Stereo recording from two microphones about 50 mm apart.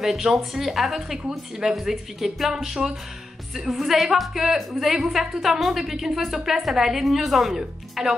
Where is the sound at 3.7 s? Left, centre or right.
Centre.